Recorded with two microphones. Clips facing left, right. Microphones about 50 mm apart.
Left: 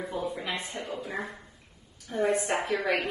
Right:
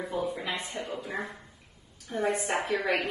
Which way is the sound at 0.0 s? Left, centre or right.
Centre.